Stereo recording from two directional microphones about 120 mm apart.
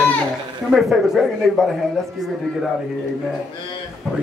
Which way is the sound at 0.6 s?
5° right (ahead or behind).